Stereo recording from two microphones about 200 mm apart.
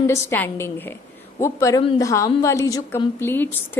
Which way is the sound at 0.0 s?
15° left (ahead or behind).